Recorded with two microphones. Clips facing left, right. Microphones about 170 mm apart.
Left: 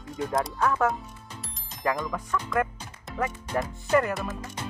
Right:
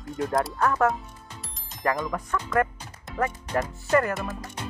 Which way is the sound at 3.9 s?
10° left (ahead or behind).